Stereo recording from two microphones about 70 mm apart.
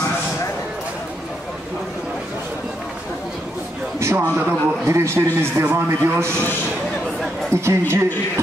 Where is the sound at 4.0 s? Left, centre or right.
Right.